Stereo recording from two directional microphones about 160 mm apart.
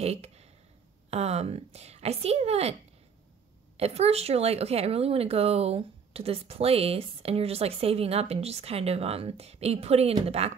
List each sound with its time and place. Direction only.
0.0 s a sound: 40° right (ahead or behind)
1.1 s speech: 40° right (ahead or behind)
3.7 s speech: 40° right (ahead or behind)